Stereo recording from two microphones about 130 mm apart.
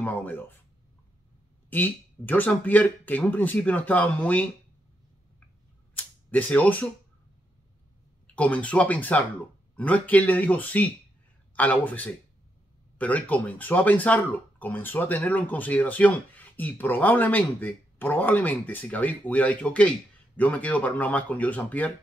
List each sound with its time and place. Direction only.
0.0 s speech: 15° left (ahead or behind)
1.7 s speech: 15° left (ahead or behind)
5.9 s speech: 10° left (ahead or behind)
8.4 s speech: 10° left (ahead or behind)